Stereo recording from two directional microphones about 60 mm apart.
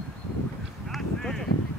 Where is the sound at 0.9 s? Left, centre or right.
Centre.